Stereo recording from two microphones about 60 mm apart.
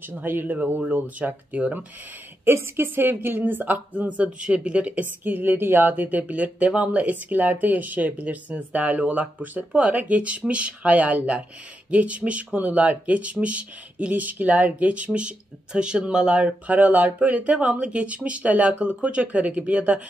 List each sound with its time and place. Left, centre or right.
0.1 s speech: right
2.4 s speech: right